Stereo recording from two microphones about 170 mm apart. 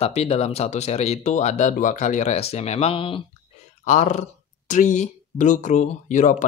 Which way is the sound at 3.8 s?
45° left (ahead or behind).